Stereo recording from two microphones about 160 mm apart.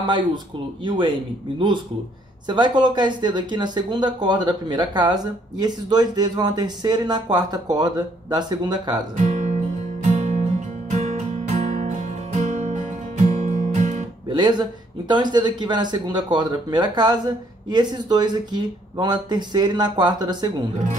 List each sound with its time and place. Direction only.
0.0 s speech: 30° right (ahead or behind)
2.4 s speech: 30° right (ahead or behind)
9.1 s guitar: 45° right (ahead or behind)
10.0 s music: 45° right (ahead or behind)
14.3 s speech: 25° right (ahead or behind)